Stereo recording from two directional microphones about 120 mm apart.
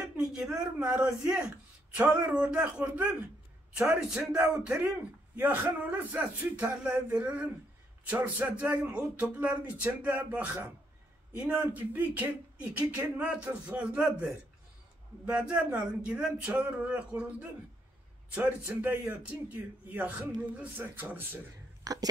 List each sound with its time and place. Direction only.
0.1 s a sound: 5° right (ahead or behind)
2.0 s speech: 10° right (ahead or behind)
21.8 s speech: 30° right (ahead or behind)